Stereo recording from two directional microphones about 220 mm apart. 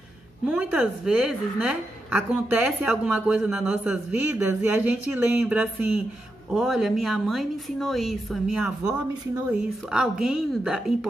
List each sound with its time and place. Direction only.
0.5 s a woman's voice: 5° right (ahead or behind)